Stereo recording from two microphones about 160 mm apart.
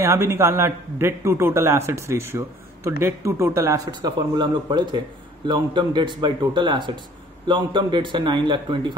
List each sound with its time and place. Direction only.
0.0 s a man's voice: 15° right (ahead or behind)